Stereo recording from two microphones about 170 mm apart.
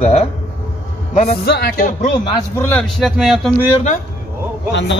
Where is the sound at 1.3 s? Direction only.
65° left (ahead or behind).